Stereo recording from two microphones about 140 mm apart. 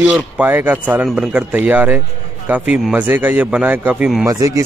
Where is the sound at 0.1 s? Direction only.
15° right (ahead or behind).